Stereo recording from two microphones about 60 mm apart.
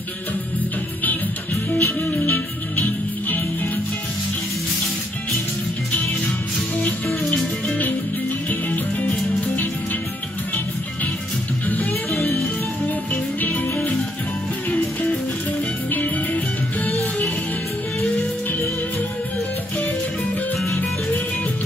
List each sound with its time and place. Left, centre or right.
1.0 s music: left
6.8 s music: left
11.6 s music: left
13.1 s music: left
15.9 s music: left